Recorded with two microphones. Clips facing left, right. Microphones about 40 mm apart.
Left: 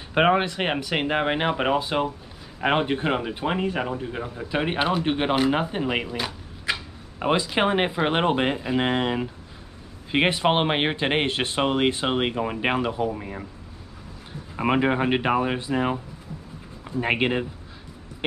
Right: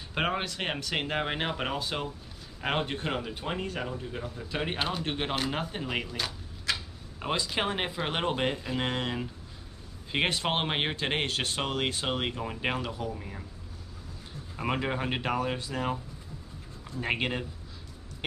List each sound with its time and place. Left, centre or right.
0.1 s speech: left
14.6 s speech: left